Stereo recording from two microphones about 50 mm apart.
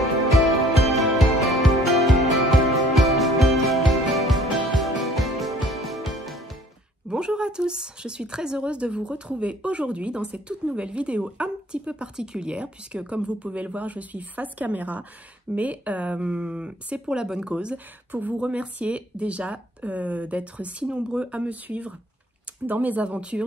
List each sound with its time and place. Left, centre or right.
0.3 s music: centre
7.1 s speech: centre